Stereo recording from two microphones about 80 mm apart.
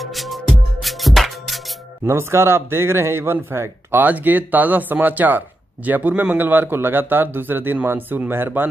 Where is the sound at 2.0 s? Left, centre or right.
Right.